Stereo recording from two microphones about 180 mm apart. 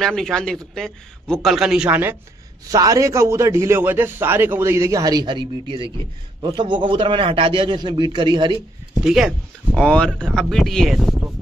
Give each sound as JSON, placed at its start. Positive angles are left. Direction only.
{"t": 0.0, "sound": "a man's voice", "side_deg": 0}
{"t": 9.0, "sound": "speech", "side_deg": 0}